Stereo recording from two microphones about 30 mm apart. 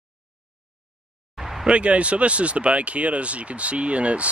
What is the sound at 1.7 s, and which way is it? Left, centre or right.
Speech, right.